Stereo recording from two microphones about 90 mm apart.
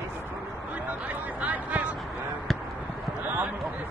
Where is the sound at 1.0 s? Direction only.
15° right (ahead or behind).